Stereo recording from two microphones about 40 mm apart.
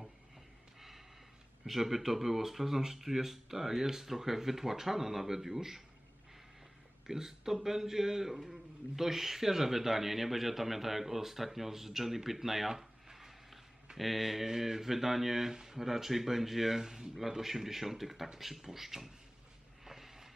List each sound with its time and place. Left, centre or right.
0.7 s snort: centre
1.7 s speech: centre
7.1 s speech: centre
19.8 s a sound: centre